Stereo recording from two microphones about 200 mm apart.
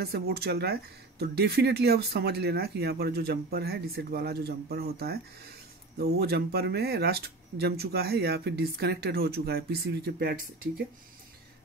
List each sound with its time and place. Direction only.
0.0 s speech: 50° right (ahead or behind)